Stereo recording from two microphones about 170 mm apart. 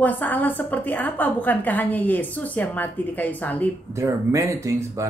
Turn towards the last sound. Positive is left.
turn(degrees=-20)  # may be behind; listen again after turning